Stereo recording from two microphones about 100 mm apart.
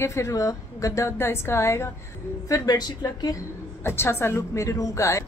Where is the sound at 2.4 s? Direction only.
35° left (ahead or behind).